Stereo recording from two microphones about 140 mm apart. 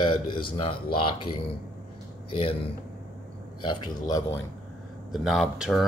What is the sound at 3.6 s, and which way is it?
Speech, 30° left (ahead or behind).